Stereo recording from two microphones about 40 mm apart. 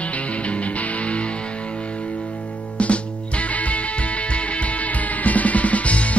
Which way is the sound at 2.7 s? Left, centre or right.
Left.